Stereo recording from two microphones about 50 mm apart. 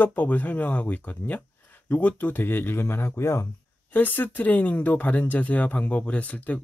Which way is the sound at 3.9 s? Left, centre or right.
Left.